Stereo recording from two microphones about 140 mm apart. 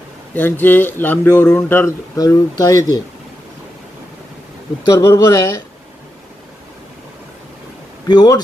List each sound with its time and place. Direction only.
0.3 s speech: 15° left (ahead or behind)
2.1 s speech: 25° left (ahead or behind)
4.9 s speech: 25° left (ahead or behind)
8.1 s speech: 30° left (ahead or behind)